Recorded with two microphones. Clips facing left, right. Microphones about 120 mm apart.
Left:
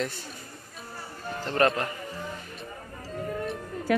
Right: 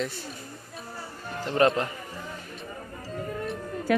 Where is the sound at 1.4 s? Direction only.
15° right (ahead or behind).